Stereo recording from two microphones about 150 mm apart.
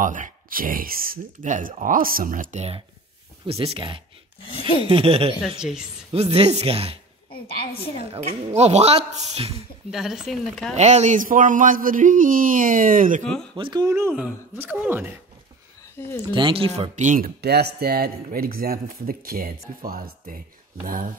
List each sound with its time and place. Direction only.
0.0 s a man's voice: 60° right (ahead or behind)
3.4 s speech: 40° right (ahead or behind)
5.6 s speech: 5° right (ahead or behind)
6.1 s speech: 40° right (ahead or behind)
8.0 s a woman's voice: 45° right (ahead or behind)
9.8 s speech: centre (ahead or behind)
10.7 s a man's voice: 50° right (ahead or behind)
13.2 s speech: 5° left (ahead or behind)
13.6 s speech: 30° right (ahead or behind); by 15.1 s 10° right (ahead or behind)
16.3 s speech: 35° right (ahead or behind)
16.9 s speech: 55° right (ahead or behind)